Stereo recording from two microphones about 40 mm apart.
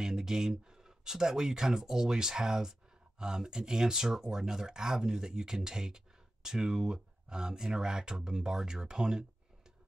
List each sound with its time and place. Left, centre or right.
0.0 s speech: centre